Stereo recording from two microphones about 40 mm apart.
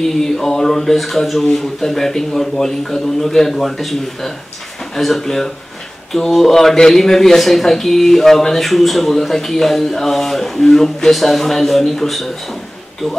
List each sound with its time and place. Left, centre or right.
0.0 s speech: centre